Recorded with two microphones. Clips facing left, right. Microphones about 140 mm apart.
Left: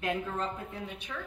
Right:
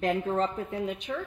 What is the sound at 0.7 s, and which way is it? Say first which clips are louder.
Speech: right 9 dB; 40° right (ahead or behind).